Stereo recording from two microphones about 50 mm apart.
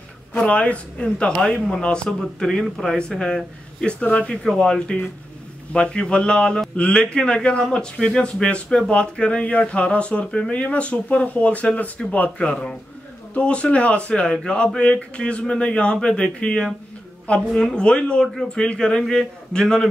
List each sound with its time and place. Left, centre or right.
0.4 s a man's voice: left
4.4 s a man's voice: centre